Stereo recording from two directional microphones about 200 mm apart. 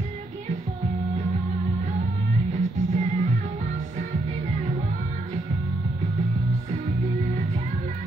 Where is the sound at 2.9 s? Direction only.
35° right (ahead or behind).